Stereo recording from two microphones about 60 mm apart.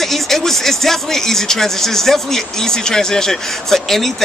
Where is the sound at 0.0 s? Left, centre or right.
Centre.